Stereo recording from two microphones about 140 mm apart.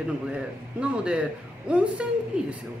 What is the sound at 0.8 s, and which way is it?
Speech, 5° right (ahead or behind).